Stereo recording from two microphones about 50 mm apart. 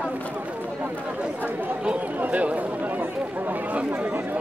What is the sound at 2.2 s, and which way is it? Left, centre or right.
Chatter, right.